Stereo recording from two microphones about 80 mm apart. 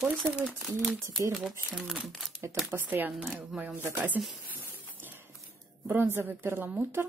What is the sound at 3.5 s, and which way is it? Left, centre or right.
Speech, centre.